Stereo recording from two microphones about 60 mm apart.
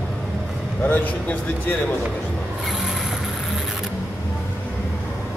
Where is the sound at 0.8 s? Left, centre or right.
Left.